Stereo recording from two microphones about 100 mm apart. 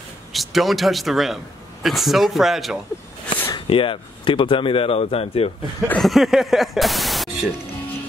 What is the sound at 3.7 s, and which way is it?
Speech, 60° left (ahead or behind).